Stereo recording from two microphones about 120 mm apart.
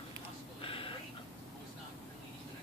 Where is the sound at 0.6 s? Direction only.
50° left (ahead or behind).